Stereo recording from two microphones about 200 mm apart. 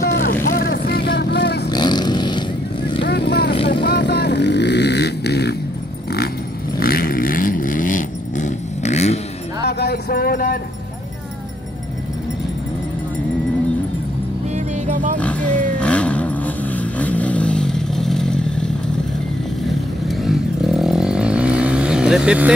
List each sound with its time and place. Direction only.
0.2 s vehicle: 45° left (ahead or behind)
1.7 s a sound: 20° left (ahead or behind)
3.0 s vehicle: 55° left (ahead or behind)
6.8 s vehicle: 45° left (ahead or behind)
9.6 s a sound: 55° left (ahead or behind)
14.5 s vehicle: 40° right (ahead or behind)
15.1 s a sound: 5° left (ahead or behind)
15.8 s vehicle: 5° left (ahead or behind)
20.1 s vehicle: centre (ahead or behind)